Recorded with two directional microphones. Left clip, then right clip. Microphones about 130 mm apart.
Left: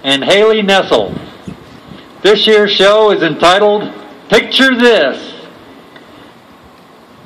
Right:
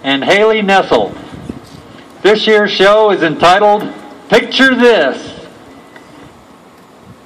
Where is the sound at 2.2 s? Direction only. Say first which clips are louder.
Left 1 dB; 85° left.